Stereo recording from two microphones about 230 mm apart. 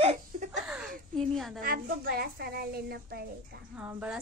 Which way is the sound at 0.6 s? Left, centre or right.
Centre.